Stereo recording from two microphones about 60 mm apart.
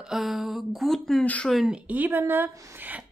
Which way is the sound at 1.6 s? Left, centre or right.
Right.